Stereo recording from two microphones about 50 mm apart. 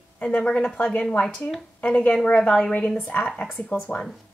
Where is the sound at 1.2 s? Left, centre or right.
Centre.